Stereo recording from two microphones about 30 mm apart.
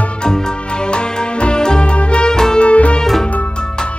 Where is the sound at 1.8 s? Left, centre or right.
Left.